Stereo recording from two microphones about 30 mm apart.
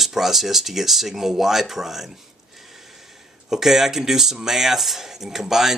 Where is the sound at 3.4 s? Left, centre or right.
Centre.